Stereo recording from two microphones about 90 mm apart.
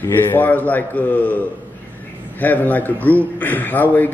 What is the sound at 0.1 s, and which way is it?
A man's voice, 20° left (ahead or behind).